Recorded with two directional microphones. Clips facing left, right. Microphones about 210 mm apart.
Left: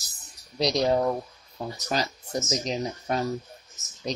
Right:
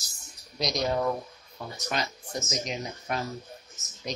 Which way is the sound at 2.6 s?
35° left (ahead or behind).